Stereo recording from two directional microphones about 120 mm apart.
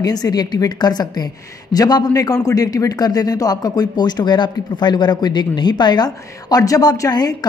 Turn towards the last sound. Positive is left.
turn(degrees=35)  # may be behind; listen again after turning